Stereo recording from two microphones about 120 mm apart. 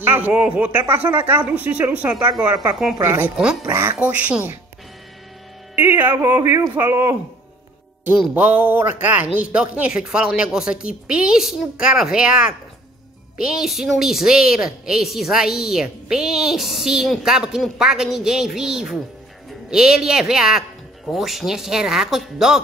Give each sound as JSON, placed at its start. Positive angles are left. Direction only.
{"t": 0.0, "sound": "speech", "side_deg": -15}
{"t": 2.5, "sound": "speech", "side_deg": -30}
{"t": 3.0, "sound": "speech", "side_deg": -20}
{"t": 3.3, "sound": "speech", "side_deg": -5}
{"t": 5.8, "sound": "speech", "side_deg": -15}
{"t": 8.4, "sound": "a woman's voice", "side_deg": -15}